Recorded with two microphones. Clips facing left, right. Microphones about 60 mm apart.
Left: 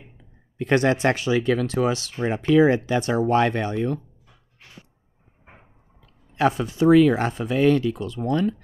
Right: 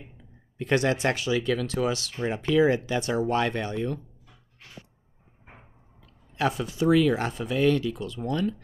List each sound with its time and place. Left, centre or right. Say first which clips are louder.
0.6 s speech: left 4 dB; left
2.1 s speech: left 5 dB; left
6.3 s speech: left 5 dB; left